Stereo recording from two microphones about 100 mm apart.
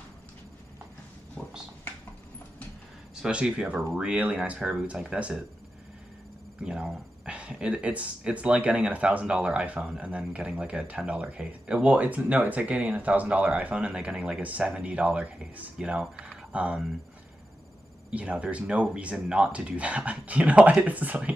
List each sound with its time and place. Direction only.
3.2 s speech: 10° right (ahead or behind)
6.6 s speech: 10° right (ahead or behind)
18.1 s speech: 10° right (ahead or behind)